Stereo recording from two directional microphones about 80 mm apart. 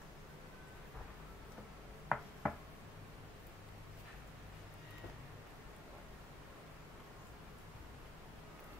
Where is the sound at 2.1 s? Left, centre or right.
Centre.